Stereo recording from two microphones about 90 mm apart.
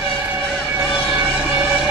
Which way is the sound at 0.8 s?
10° right (ahead or behind).